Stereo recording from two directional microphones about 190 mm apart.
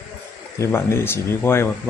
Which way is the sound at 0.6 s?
15° left (ahead or behind).